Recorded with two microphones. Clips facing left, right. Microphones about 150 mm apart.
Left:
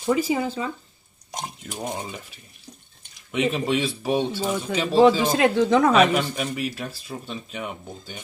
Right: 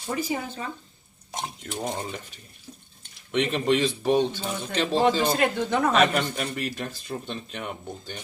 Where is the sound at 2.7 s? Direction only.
40° left (ahead or behind).